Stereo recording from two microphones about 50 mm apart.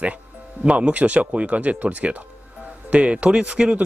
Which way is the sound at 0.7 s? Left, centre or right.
Right.